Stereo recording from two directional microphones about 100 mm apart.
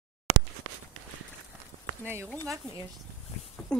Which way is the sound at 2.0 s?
20° right (ahead or behind).